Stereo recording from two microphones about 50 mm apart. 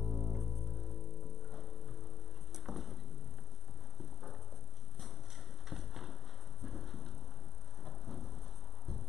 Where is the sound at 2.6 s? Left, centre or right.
Centre.